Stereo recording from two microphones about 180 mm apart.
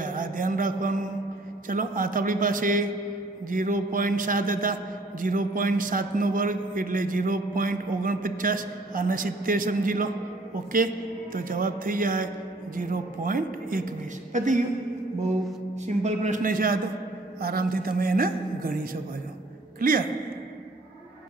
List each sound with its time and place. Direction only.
0.0 s a sound: 50° right (ahead or behind)
1.7 s a man's voice: 50° right (ahead or behind)
11.3 s a man's voice: 50° right (ahead or behind)
15.7 s a man's voice: 40° right (ahead or behind)